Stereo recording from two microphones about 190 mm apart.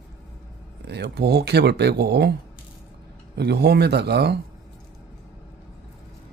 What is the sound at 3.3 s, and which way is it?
Speech, 60° right (ahead or behind).